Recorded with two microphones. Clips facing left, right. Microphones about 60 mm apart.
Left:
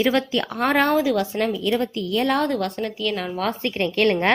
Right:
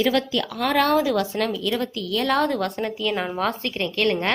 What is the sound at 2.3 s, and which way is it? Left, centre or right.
Speech, centre.